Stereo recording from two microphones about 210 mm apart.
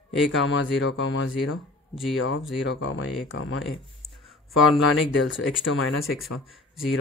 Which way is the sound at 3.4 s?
70° left (ahead or behind).